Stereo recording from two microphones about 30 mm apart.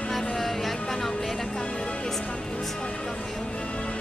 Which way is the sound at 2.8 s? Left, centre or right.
Left.